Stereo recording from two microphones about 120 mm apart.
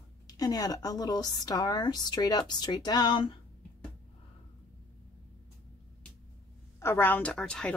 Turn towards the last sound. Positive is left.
turn(degrees=5)  # may be behind; listen again after turning